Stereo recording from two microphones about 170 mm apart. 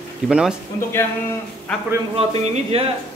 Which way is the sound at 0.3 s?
5° right (ahead or behind).